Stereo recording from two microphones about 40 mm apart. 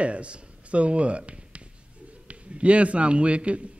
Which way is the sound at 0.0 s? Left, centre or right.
Right.